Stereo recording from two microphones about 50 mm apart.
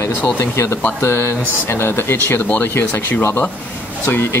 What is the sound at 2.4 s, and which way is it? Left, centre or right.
Speech, left.